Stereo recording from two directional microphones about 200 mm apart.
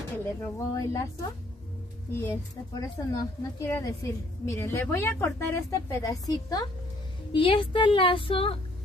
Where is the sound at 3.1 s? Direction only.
15° left (ahead or behind).